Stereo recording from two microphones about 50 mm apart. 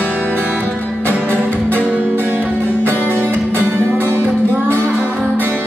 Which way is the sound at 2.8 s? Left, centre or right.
Right.